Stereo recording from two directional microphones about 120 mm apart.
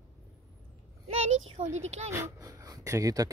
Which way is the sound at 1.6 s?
70° right (ahead or behind).